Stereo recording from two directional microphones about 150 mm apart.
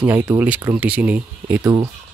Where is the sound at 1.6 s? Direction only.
30° right (ahead or behind).